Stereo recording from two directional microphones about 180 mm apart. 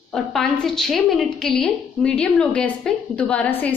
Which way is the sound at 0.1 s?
Centre (ahead or behind).